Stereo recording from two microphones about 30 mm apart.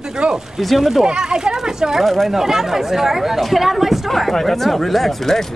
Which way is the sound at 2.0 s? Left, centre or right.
Centre.